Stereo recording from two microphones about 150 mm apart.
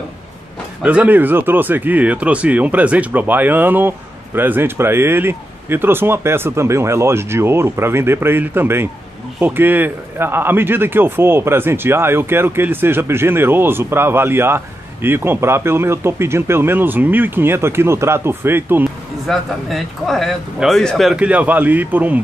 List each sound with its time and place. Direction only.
0.8 s speech: 10° right (ahead or behind)
19.2 s speech: centre (ahead or behind)